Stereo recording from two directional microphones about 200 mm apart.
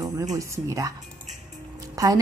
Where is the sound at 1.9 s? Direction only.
15° right (ahead or behind).